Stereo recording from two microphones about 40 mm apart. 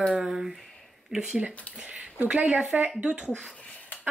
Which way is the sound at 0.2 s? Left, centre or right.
Centre.